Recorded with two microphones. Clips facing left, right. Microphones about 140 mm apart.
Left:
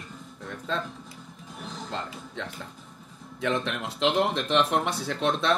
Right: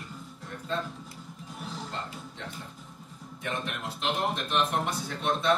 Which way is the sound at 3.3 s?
90° left.